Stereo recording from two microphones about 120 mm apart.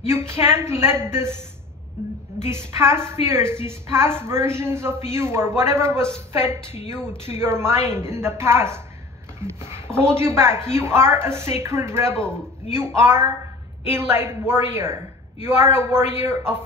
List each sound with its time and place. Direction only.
0.1 s a woman's voice: 20° right (ahead or behind)
2.4 s a woman's voice: 20° right (ahead or behind)